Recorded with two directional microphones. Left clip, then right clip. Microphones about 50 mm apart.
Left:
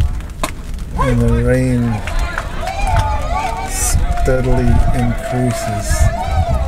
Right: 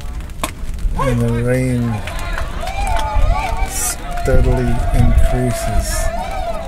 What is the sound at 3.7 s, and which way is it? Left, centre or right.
Run, right.